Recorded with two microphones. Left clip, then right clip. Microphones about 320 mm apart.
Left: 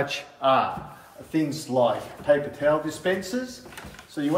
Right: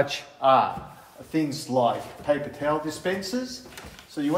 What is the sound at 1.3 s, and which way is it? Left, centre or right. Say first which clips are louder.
Speech: left 1 dB; centre.